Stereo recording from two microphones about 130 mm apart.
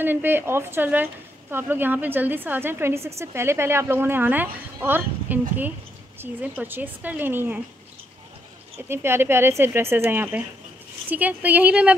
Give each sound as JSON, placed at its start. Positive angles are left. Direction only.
{"t": 0.0, "sound": "speech", "side_deg": -15}
{"t": 8.7, "sound": "speech", "side_deg": -20}